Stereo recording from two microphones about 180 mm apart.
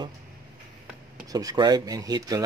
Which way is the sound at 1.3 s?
20° right (ahead or behind).